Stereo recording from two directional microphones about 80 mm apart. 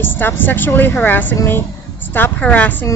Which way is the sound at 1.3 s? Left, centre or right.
Left.